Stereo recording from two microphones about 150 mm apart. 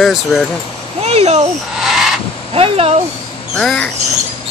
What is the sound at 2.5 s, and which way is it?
Speech, 40° right (ahead or behind).